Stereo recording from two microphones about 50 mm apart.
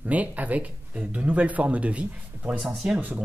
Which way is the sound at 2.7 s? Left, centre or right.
Centre.